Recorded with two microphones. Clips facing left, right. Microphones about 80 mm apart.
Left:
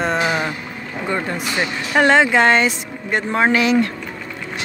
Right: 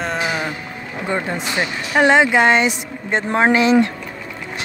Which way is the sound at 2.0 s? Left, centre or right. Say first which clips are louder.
Even; centre.